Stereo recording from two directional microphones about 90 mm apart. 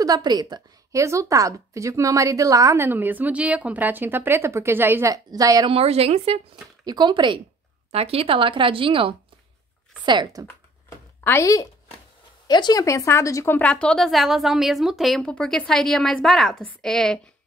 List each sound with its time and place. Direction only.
0.0 s a woman's voice: 50° right (ahead or behind)
0.9 s a woman's voice: 35° right (ahead or behind)
5.1 s a woman's voice: 45° right (ahead or behind)
5.7 s speech: 90° right
6.8 s speech: 50° right (ahead or behind)
7.9 s speech: 90° right
10.4 s a sound: 25° left (ahead or behind)
12.4 s speech: 50° left (ahead or behind)
12.8 s speech: 35° left (ahead or behind)
13.6 s speech: 10° left (ahead or behind)